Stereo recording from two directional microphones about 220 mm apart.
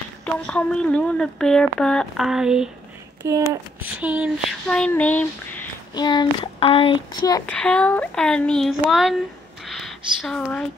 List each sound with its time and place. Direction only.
0.2 s speech: 5° left (ahead or behind)
3.2 s speech: 15° right (ahead or behind)
4.6 s speech: 5° left (ahead or behind)
5.9 s speech: 20° left (ahead or behind)
7.5 s speech: 5° left (ahead or behind)